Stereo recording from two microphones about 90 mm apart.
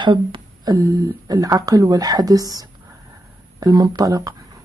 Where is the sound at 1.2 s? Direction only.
40° right (ahead or behind).